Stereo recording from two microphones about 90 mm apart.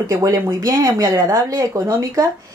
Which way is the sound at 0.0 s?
40° right (ahead or behind).